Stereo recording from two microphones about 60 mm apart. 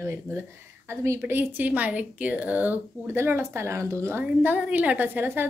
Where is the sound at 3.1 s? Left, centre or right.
Right.